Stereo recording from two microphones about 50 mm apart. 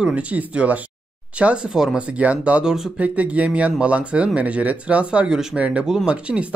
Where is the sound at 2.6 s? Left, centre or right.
Centre.